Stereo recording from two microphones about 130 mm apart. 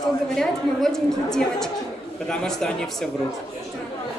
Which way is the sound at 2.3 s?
5° left (ahead or behind).